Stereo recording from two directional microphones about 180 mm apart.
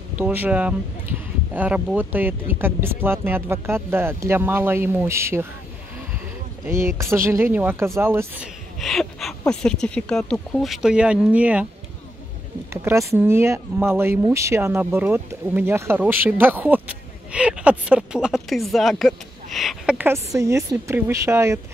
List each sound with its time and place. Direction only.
0.2 s speech: 10° right (ahead or behind)
6.7 s speech: 15° right (ahead or behind)
8.7 s a sound: centre (ahead or behind)
9.5 s speech: 5° left (ahead or behind)
13.1 s speech: 15° right (ahead or behind)